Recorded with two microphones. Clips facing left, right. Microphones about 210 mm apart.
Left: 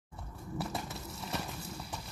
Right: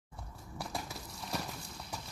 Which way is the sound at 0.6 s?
Centre (ahead or behind).